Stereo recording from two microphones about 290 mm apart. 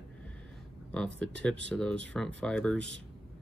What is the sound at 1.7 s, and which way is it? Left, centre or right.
Speech, centre.